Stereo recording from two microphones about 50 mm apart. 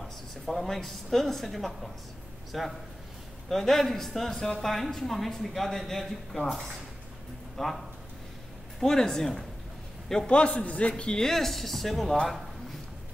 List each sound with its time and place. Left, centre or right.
0.0 s a woman's voice: centre
10.2 s a man's voice: left
11.1 s a woman's voice: centre